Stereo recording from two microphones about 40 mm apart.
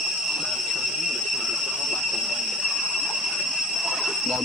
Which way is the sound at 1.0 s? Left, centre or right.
Centre.